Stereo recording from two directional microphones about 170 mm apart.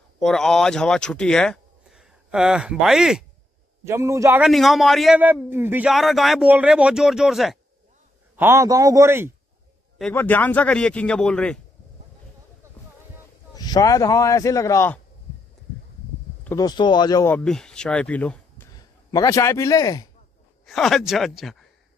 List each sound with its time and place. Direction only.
0.2 s speech: 5° left (ahead or behind)
3.8 s a man's voice: 15° right (ahead or behind)
4.4 s speech: centre (ahead or behind)
5.9 s speech: centre (ahead or behind)
8.4 s a man's voice: 15° right (ahead or behind)
10.1 s a man's voice: 10° left (ahead or behind)
13.6 s speech: 20° left (ahead or behind)
16.4 s speech: 20° left (ahead or behind)
17.3 s speech: 5° left (ahead or behind)
19.1 s speech: 20° left (ahead or behind)
20.6 s speech: centre (ahead or behind)